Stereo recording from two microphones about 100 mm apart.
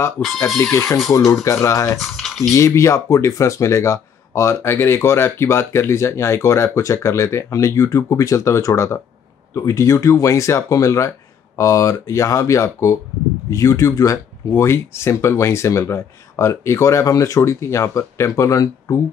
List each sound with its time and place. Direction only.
0.2 s speech: 20° left (ahead or behind)
1.1 s speech: 35° left (ahead or behind)
2.0 s speech: centre (ahead or behind)
2.5 s speech: 30° left (ahead or behind)